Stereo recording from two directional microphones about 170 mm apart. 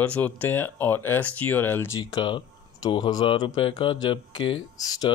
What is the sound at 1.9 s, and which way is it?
Speech, 25° left (ahead or behind).